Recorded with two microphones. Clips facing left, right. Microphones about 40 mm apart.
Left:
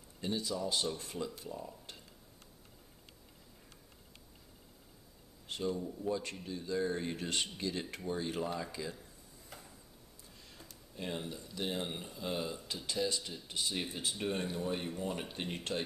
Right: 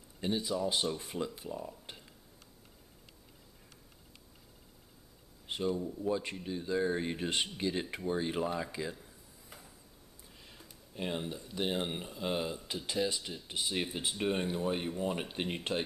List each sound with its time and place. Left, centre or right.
0.2 s speech: right
5.5 s a man's voice: centre
11.0 s speech: right